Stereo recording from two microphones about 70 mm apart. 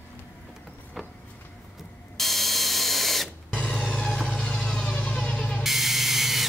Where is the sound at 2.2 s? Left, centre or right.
Centre.